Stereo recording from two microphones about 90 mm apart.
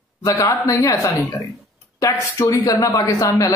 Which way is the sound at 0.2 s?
40° left (ahead or behind).